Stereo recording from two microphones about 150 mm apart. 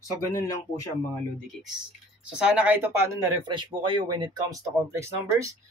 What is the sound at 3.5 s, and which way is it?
Speech, 35° right (ahead or behind).